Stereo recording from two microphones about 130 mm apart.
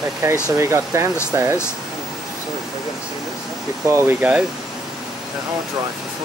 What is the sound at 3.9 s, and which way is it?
Speech, 20° right (ahead or behind).